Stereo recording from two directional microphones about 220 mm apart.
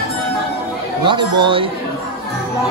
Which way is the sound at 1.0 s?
20° right (ahead or behind).